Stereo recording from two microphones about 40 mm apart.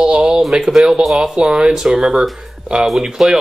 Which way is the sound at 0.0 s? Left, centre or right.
Right.